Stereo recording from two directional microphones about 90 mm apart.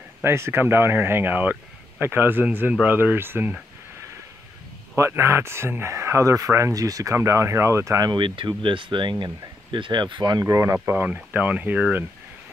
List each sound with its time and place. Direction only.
0.2 s speech: 25° right (ahead or behind)
4.9 s speech: 30° right (ahead or behind)
8.1 s speech: 60° right (ahead or behind)
10.4 s speech: 35° right (ahead or behind)
11.1 s speech: 20° right (ahead or behind)